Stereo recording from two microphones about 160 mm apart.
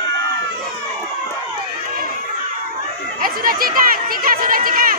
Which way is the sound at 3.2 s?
65° right (ahead or behind).